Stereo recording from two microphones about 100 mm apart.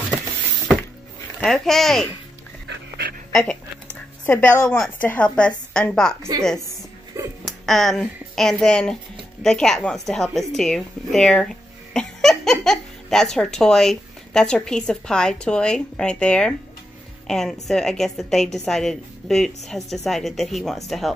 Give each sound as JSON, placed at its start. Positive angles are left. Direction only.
{"t": 1.4, "sound": "a woman's voice", "side_deg": 5}
{"t": 3.3, "sound": "a sound", "side_deg": 5}
{"t": 4.3, "sound": "a woman's voice", "side_deg": 10}
{"t": 7.2, "sound": "music", "side_deg": -25}
{"t": 7.6, "sound": "a woman's voice", "side_deg": 0}